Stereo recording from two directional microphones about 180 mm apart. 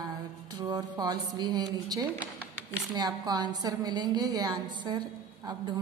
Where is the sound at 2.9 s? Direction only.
20° right (ahead or behind).